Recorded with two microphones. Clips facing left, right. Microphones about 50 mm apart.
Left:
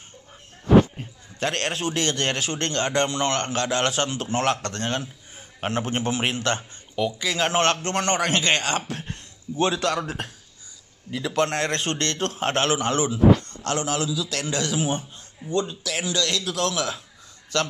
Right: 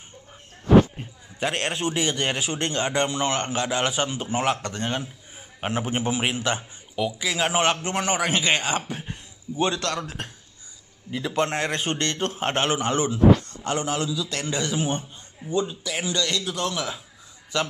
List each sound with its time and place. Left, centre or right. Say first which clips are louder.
0.9 s a man's voice: even; centre
11.2 s a man's voice: left 1 dB; centre
17.5 s a man's voice: left 1 dB; centre